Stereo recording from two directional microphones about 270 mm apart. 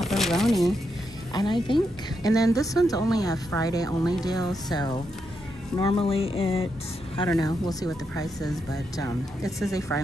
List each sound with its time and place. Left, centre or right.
0.0 s a sound: centre
1.3 s speech: centre
5.8 s speech: centre